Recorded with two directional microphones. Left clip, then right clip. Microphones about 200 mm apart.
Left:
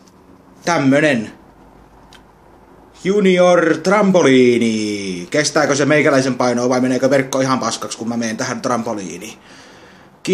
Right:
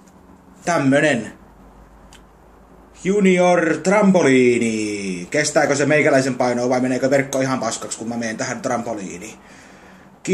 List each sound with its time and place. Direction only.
0.7 s a man's voice: 25° left (ahead or behind)
3.1 s a man's voice: 25° left (ahead or behind)